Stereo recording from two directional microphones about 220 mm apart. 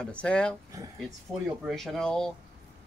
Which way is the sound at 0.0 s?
5° left (ahead or behind).